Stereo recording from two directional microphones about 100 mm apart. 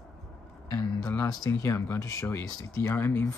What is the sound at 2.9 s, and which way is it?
Speech, 20° left (ahead or behind).